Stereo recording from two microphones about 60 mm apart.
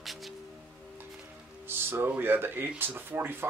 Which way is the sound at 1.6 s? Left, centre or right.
Right.